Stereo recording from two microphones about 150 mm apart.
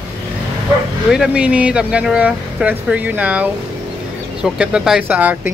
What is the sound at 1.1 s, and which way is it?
Speech, 5° right (ahead or behind).